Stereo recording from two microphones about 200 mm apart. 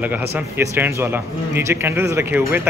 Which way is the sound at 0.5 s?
10° right (ahead or behind).